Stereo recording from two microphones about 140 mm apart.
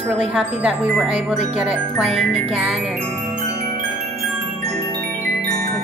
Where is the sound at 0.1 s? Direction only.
10° right (ahead or behind).